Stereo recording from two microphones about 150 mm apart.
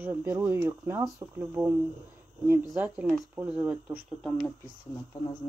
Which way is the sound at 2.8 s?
Centre (ahead or behind).